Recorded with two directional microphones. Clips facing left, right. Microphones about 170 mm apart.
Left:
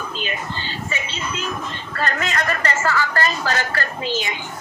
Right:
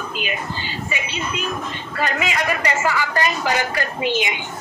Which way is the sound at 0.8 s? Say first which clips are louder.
Right 2 dB; 15° right (ahead or behind).